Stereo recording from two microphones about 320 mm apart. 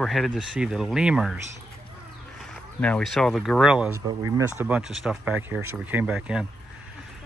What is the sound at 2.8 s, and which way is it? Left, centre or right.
Speech, centre.